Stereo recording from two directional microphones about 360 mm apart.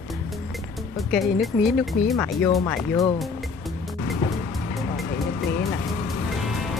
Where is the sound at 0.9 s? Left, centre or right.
Centre.